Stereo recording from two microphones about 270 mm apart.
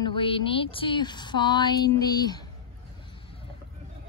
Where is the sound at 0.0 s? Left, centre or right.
Centre.